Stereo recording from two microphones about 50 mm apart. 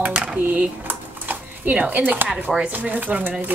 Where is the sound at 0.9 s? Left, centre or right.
Right.